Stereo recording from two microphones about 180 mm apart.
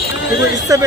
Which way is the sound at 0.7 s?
20° right (ahead or behind).